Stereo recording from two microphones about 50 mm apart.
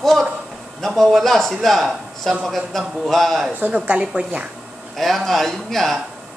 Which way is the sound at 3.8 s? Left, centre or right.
Right.